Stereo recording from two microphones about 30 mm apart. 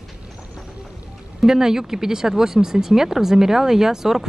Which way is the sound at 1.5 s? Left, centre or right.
Centre.